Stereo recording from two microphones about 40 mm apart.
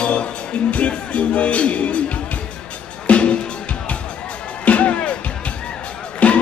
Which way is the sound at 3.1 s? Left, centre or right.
Left.